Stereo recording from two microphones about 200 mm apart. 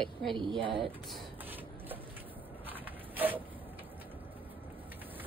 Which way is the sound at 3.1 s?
10° right (ahead or behind).